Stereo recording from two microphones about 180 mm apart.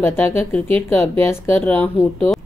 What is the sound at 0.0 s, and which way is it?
A woman's voice, 10° left (ahead or behind).